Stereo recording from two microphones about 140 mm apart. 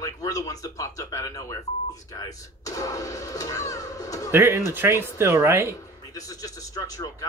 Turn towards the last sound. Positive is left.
turn(degrees=25)  # may be behind; listen again after turning